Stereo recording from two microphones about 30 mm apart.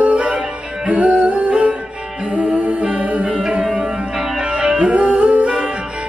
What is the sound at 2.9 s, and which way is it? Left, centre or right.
Music, right.